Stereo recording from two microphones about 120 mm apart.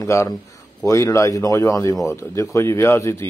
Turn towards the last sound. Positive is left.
turn(degrees=20)  # may be behind; listen again after turning